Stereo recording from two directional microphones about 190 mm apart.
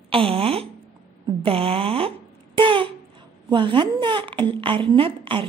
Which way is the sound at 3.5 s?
25° right (ahead or behind).